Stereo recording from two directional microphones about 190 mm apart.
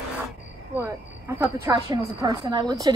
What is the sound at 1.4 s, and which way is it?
A woman's voice, 15° right (ahead or behind).